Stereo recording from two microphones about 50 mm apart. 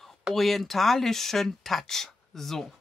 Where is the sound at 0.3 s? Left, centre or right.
Centre.